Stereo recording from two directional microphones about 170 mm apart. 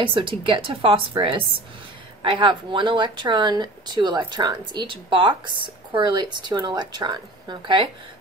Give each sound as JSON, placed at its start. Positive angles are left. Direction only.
{"t": 0.0, "sound": "speech", "side_deg": -30}